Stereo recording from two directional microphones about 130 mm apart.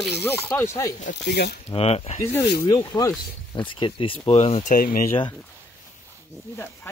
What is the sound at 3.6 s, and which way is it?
Speech, 40° left (ahead or behind).